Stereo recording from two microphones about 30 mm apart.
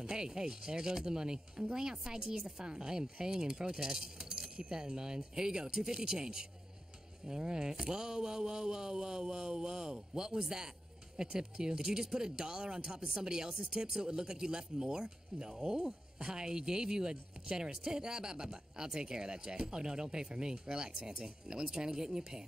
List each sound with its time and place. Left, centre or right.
0.0 s speech: right